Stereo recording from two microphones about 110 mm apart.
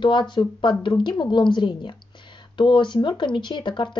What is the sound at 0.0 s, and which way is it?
Speech, 45° left (ahead or behind).